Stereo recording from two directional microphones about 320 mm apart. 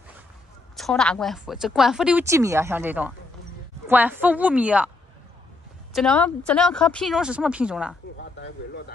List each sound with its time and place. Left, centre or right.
0.7 s speech: centre
5.9 s speech: centre
8.2 s speech: left